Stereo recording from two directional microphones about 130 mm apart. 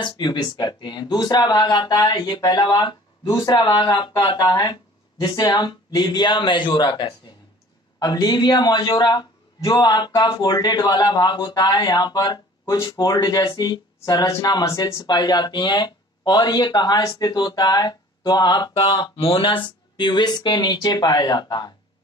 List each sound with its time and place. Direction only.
0.0 s speech: 35° left (ahead or behind)